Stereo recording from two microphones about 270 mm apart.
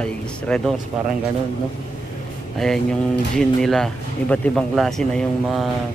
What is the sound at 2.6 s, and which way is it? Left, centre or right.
Speech, centre.